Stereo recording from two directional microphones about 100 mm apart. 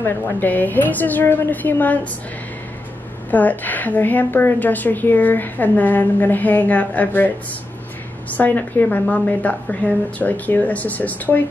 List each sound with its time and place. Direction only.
0.0 s a woman's voice: 20° left (ahead or behind)
3.3 s a woman's voice: 15° left (ahead or behind)